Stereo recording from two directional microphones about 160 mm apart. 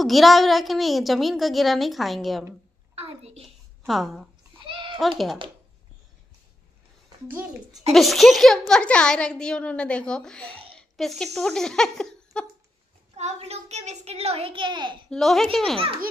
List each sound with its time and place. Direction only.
0.0 s a woman's voice: centre (ahead or behind)
3.0 s a child's voice: 40° right (ahead or behind)
3.4 s a sound: centre (ahead or behind)
4.6 s a sound: 30° right (ahead or behind)
7.9 s a woman's voice: centre (ahead or behind)
13.1 s a child's voice: 40° right (ahead or behind)
15.0 s a woman's voice: centre (ahead or behind)